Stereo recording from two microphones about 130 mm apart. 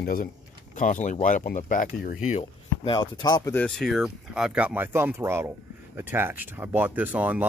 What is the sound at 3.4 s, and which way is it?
Speech, 15° left (ahead or behind).